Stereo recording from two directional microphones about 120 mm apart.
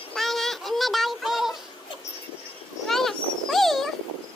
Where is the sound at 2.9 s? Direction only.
Centre (ahead or behind).